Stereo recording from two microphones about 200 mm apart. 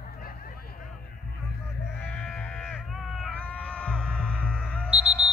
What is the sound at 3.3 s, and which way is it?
Music, 5° left (ahead or behind).